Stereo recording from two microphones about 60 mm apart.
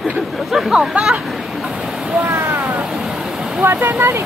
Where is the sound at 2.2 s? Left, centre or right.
Right.